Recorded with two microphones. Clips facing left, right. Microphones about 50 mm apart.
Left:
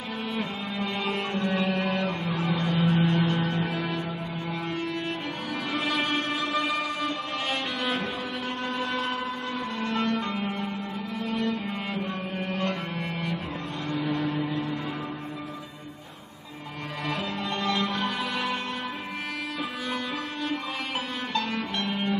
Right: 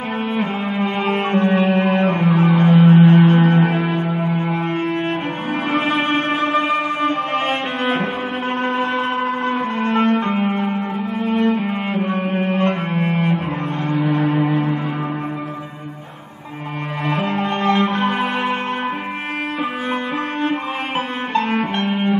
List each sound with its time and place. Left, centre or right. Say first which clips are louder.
0.4 s music: right 10 dB; right
8.6 s shofar: right 9 dB; right
9.5 s music: right 10 dB; right
11.2 s cello: right 11 dB; right
13.8 s music: right 9 dB; right
17.1 s music: right 11 dB; right
21.3 s music: right 11 dB; right